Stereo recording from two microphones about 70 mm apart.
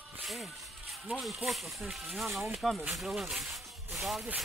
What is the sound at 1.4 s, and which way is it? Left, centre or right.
Speech, centre.